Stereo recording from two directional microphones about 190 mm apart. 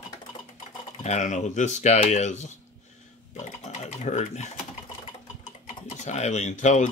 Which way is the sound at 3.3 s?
35° left (ahead or behind).